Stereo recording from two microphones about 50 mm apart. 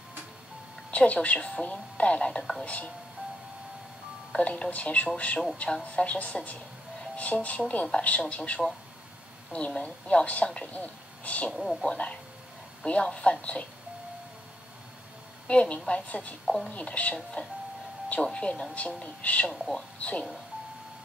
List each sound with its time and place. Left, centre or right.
0.9 s speech: left
4.3 s speech: left
9.8 s speech: left
11.5 s a woman's voice: centre
12.8 s speech: left
15.4 s a woman's voice: left
16.4 s speech: centre
16.7 s speech: left
19.5 s speech: centre
20.0 s speech: left